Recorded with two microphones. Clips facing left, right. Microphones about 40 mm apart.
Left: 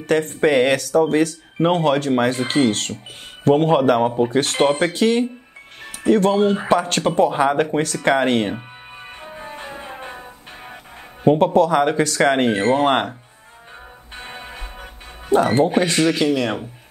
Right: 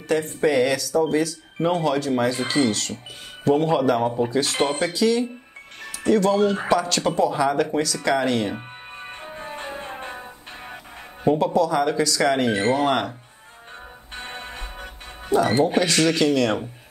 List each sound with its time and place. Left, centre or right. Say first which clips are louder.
0.0 s speech: left 4 dB; left
8.5 s music: even; centre
11.2 s speech: left 5 dB; left
14.1 s music: even; centre
15.3 s speech: left 3 dB; left
15.7 s speech: left 2 dB; left
16.0 s speech: left 1 dB; centre